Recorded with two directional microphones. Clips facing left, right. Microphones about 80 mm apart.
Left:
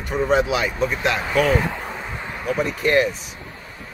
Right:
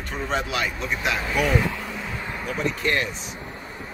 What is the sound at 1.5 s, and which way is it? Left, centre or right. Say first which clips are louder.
Vehicle: left 2 dB; left.